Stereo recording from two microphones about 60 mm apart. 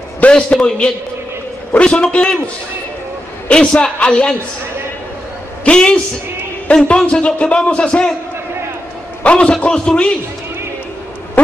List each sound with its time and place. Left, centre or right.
0.2 s speech: centre
5.7 s speech: centre
9.2 s speech: centre
11.4 s a sound: left